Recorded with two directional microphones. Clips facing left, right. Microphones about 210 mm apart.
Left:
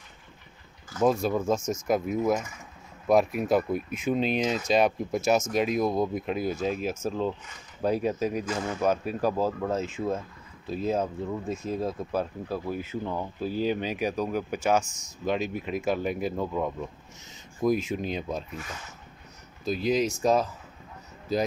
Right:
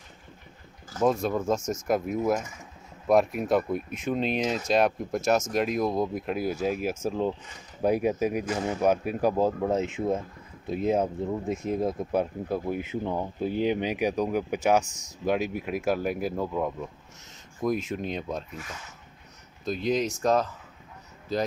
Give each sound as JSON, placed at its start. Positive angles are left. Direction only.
{"t": 1.0, "sound": "speech", "side_deg": 0}
{"t": 19.6, "sound": "speech", "side_deg": 5}